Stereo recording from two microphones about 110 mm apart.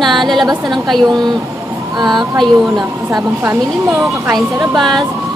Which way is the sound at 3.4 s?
25° right (ahead or behind).